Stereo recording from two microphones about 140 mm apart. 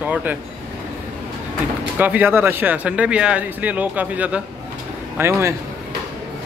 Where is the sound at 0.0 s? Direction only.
10° right (ahead or behind).